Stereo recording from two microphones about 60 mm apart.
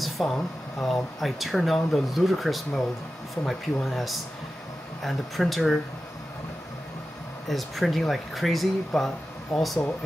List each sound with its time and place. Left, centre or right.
0.2 s speech: centre
7.4 s speech: centre